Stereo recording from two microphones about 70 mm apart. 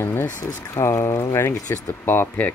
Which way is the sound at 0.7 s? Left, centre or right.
Left.